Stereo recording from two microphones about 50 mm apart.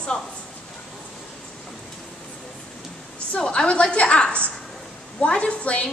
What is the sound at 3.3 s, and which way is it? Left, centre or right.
A woman's voice, centre.